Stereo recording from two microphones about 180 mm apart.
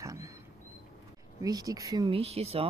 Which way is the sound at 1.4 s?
20° right (ahead or behind).